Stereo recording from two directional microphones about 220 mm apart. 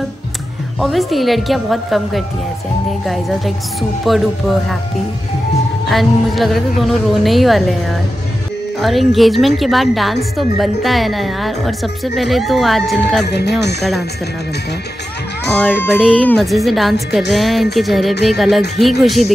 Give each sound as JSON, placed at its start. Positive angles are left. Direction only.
{"t": 0.7, "sound": "a woman's voice", "side_deg": 0}
{"t": 4.0, "sound": "a woman's voice", "side_deg": 0}
{"t": 5.9, "sound": "a woman's voice", "side_deg": 0}
{"t": 8.7, "sound": "a woman's voice", "side_deg": 0}
{"t": 13.2, "sound": "speech", "side_deg": 50}
{"t": 15.9, "sound": "a woman's voice", "side_deg": 0}